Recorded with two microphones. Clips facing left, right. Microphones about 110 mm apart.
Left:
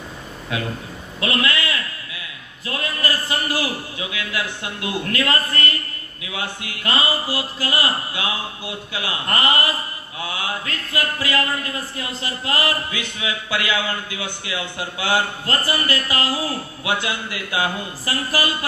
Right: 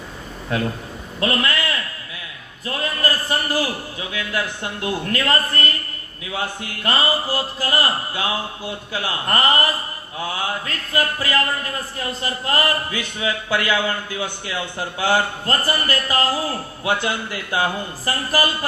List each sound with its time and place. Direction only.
1.2 s a man's voice: 40° right (ahead or behind)